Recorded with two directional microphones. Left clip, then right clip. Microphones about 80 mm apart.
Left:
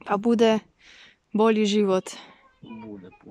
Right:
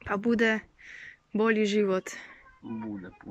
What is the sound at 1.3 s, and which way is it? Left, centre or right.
Speech, left.